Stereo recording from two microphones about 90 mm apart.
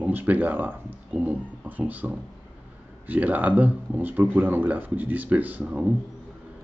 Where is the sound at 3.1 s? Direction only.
20° right (ahead or behind).